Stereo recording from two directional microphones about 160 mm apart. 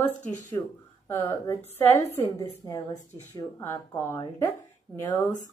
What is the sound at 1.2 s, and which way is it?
A woman's voice, 15° left (ahead or behind).